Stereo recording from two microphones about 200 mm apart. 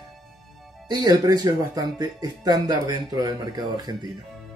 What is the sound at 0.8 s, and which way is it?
Speech, 20° right (ahead or behind).